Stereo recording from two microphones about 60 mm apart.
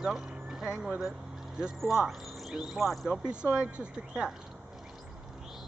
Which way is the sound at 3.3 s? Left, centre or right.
Centre.